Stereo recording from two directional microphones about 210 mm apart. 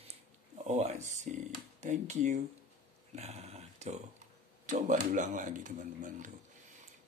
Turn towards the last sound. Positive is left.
turn(degrees=-40)  # may be behind; listen again after turning